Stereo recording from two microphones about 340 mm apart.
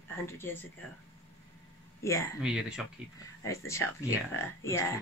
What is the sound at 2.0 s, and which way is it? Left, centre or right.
Speech, centre.